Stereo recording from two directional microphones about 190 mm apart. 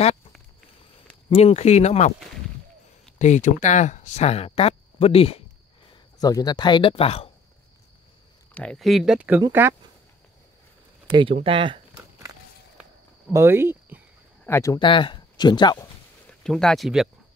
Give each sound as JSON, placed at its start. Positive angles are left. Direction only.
{"t": 1.3, "sound": "speech", "side_deg": 35}
{"t": 3.2, "sound": "speech", "side_deg": 40}
{"t": 6.1, "sound": "speech", "side_deg": 20}
{"t": 8.5, "sound": "speech", "side_deg": 0}
{"t": 11.1, "sound": "speech", "side_deg": -25}
{"t": 11.4, "sound": "a sound", "side_deg": -25}
{"t": 13.3, "sound": "speech", "side_deg": -15}
{"t": 14.4, "sound": "speech", "side_deg": 15}
{"t": 16.4, "sound": "speech", "side_deg": 5}